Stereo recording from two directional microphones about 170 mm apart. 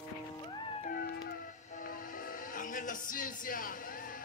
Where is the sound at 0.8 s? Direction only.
55° left (ahead or behind).